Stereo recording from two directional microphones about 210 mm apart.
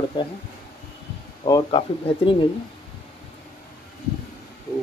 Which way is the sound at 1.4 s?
25° left (ahead or behind).